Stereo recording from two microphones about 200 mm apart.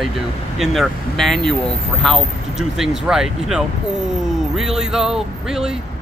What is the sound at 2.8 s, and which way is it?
Speech, centre (ahead or behind).